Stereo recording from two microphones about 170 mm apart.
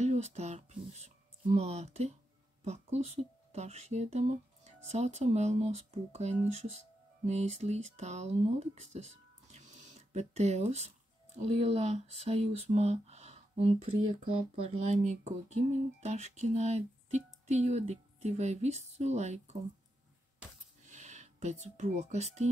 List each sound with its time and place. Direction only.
0.0 s speech: 40° right (ahead or behind)
20.8 s speech: 45° right (ahead or behind)